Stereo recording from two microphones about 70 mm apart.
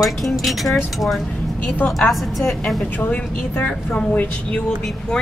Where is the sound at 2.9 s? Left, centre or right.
Left.